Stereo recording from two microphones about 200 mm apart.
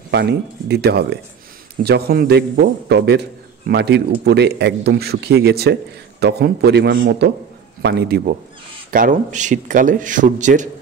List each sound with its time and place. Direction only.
0.1 s a man's voice: 55° right (ahead or behind)
8.9 s a man's voice: 40° right (ahead or behind)